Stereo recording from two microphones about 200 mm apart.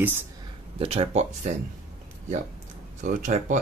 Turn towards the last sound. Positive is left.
turn(degrees=-40)  # may be behind; listen again after turning